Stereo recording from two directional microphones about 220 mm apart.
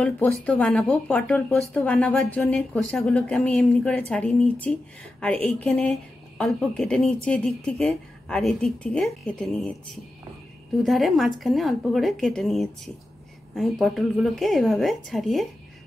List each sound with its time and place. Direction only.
0.0 s speech: 5° left (ahead or behind)
10.8 s speech: centre (ahead or behind)